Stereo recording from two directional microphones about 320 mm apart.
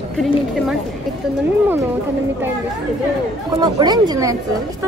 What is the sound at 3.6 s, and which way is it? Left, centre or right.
Speech, centre.